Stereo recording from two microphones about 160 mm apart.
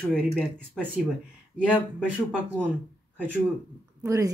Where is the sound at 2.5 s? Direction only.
10° left (ahead or behind).